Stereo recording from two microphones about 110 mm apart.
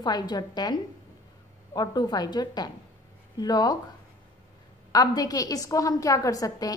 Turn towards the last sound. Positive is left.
turn(degrees=30)  # may be behind; listen again after turning